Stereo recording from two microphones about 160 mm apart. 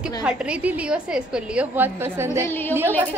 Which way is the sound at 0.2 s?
5° right (ahead or behind).